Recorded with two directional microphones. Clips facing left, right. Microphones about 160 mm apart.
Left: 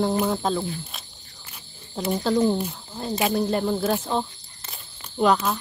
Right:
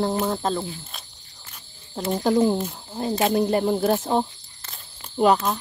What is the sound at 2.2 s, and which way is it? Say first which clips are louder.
Speech: right 2 dB; 10° right (ahead or behind).